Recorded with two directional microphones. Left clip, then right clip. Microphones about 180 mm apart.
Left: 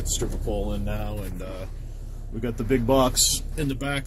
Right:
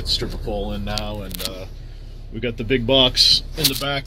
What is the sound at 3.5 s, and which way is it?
Speech, centre (ahead or behind).